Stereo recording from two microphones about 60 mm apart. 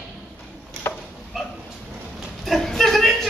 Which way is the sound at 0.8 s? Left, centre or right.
Left.